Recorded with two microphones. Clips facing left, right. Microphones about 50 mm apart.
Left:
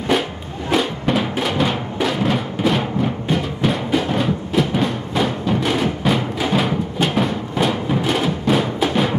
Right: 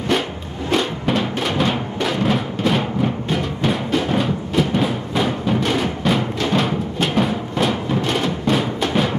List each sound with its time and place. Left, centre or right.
0.1 s music: centre